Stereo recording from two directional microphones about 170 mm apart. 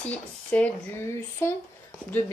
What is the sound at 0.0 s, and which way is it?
Speech, 5° left (ahead or behind).